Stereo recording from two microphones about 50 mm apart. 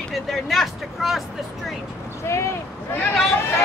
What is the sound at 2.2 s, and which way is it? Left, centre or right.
Speech, left.